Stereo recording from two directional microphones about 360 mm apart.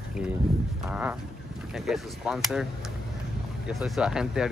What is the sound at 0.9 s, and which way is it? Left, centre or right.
Speech, centre.